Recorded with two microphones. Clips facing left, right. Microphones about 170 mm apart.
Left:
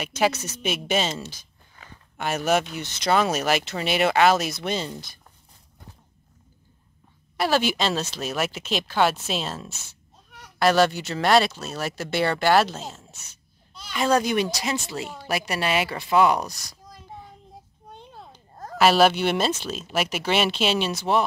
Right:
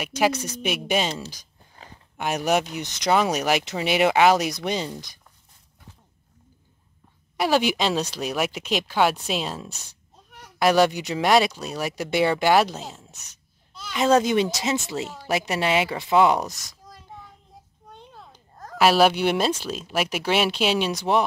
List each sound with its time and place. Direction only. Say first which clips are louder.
0.0 s speech: right 1 dB; 10° right (ahead or behind)
1.8 s a sound: right 2 dB; 30° right (ahead or behind)
2.1 s speech: even; 15° right (ahead or behind)
7.3 s a woman's voice: right 1 dB; 15° right (ahead or behind)
18.8 s speech: even; 10° right (ahead or behind)